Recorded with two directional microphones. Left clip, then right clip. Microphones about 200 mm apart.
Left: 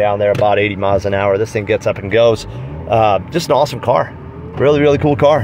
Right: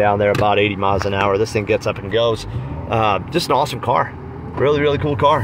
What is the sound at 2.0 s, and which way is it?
Speech, 25° left (ahead or behind).